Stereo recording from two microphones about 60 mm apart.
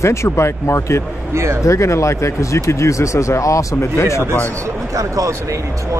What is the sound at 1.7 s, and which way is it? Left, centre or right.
Speech, left.